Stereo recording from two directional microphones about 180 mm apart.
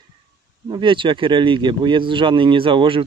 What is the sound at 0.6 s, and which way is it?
Speech, 25° right (ahead or behind).